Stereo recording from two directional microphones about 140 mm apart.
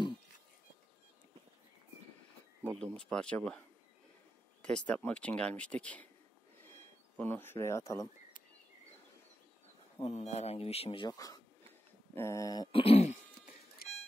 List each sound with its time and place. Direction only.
2.6 s speech: 5° left (ahead or behind)
6.6 s a sound: 15° left (ahead or behind)
10.0 s speech: 50° left (ahead or behind); by 11.4 s 25° left (ahead or behind)
12.2 s a sound: 20° left (ahead or behind)
12.7 s throat clearing: 45° left (ahead or behind)
13.8 s music: 90° left